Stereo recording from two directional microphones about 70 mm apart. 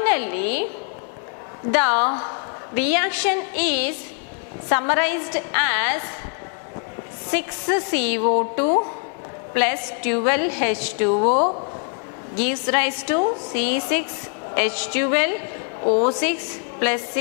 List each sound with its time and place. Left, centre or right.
0.0 s a sound: centre
1.7 s a woman's voice: centre
7.2 s a woman's voice: centre